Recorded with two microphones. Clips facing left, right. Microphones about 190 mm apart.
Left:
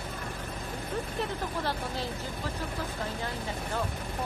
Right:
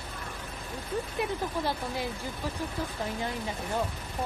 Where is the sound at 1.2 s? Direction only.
15° right (ahead or behind).